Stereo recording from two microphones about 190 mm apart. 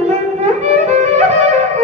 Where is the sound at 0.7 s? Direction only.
35° right (ahead or behind).